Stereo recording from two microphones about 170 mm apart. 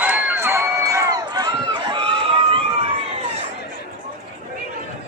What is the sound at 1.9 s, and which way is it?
Run, 30° right (ahead or behind).